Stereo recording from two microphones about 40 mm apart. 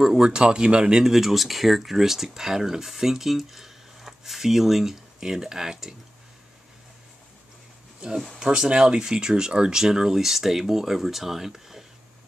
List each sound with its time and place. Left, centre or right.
0.0 s speech: centre
1.0 s speech: centre
8.4 s speech: centre